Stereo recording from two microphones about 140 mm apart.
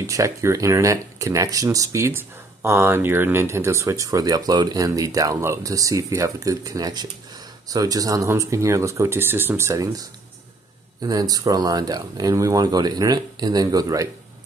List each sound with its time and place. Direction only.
0.0 s speech: 25° right (ahead or behind)